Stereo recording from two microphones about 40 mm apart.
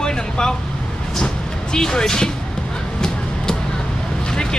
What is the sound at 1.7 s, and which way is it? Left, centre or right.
Speech, centre.